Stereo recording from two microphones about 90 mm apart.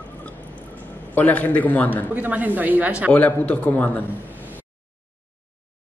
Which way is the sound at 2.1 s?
20° right (ahead or behind).